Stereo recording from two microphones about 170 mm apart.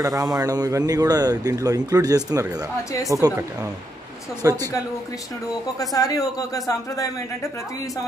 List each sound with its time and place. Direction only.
0.0 s speech: 20° right (ahead or behind)
4.4 s a woman's voice: 15° right (ahead or behind)
5.9 s speech: 20° left (ahead or behind)